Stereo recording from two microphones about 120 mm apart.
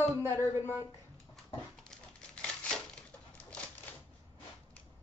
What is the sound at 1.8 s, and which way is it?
Crumpling, 5° left (ahead or behind).